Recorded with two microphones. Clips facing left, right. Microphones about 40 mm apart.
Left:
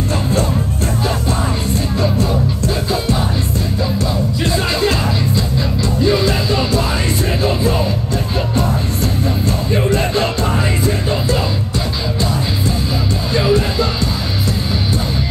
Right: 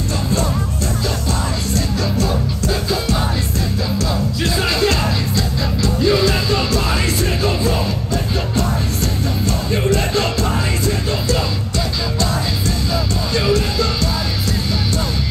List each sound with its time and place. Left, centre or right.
4.4 s music: centre
6.0 s music: centre
9.7 s music: centre
13.3 s music: centre